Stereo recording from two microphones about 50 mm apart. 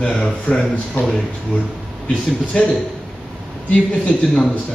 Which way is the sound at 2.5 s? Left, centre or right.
Left.